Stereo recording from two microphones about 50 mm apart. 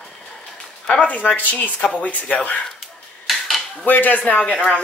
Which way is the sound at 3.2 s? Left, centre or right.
Centre.